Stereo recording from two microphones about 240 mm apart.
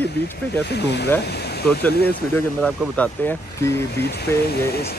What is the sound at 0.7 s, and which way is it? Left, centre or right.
Speech, left.